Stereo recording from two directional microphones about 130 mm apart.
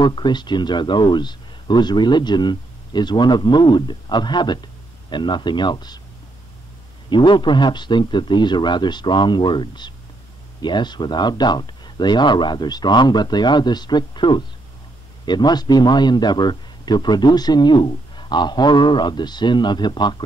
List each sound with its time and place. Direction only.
0.0 s speech: 35° left (ahead or behind)
7.1 s speech: 35° left (ahead or behind)